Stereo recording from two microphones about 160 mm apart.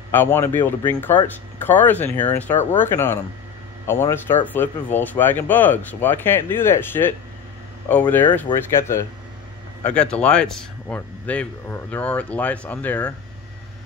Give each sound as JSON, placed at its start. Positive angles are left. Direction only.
{"t": 0.1, "sound": "speech", "side_deg": 15}